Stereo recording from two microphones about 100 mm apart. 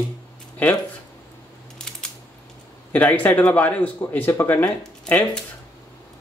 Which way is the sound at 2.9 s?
15° left (ahead or behind).